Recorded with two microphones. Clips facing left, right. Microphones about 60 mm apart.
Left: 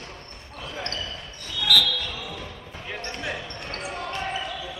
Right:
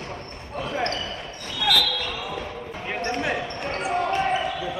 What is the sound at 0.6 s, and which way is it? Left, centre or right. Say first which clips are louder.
Basketball bounce: right 7 dB; right.